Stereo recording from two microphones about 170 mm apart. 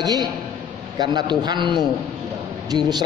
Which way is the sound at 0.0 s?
25° right (ahead or behind).